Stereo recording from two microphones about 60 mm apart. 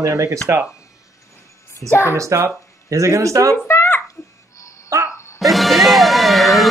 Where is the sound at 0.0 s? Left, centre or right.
Right.